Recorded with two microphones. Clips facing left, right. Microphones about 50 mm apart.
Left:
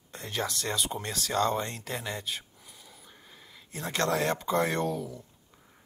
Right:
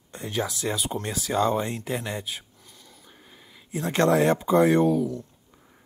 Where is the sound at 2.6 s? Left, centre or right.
Centre.